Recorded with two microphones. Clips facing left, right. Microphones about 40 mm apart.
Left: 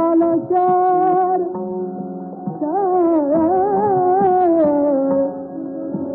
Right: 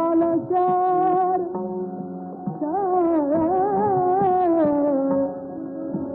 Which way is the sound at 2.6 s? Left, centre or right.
Centre.